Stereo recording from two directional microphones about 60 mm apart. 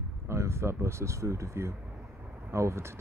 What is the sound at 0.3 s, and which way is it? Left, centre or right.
Speech, right.